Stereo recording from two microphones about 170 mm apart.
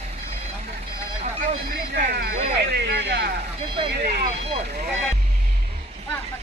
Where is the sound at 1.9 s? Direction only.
65° right (ahead or behind).